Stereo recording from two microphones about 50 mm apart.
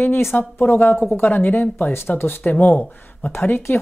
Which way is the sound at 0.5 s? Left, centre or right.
Left.